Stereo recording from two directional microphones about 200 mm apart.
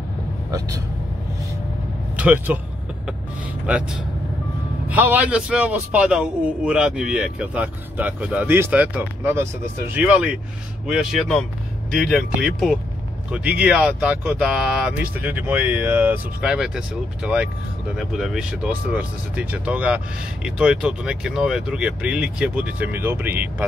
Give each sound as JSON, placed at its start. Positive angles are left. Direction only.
{"t": 0.5, "sound": "vehicle", "side_deg": -15}
{"t": 2.1, "sound": "speech", "side_deg": -10}
{"t": 4.8, "sound": "a man's voice", "side_deg": -10}